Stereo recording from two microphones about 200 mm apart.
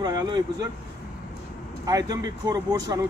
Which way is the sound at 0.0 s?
20° right (ahead or behind).